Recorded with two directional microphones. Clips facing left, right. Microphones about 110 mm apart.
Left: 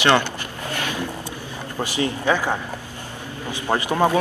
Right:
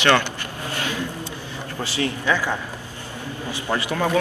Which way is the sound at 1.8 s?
20° left (ahead or behind).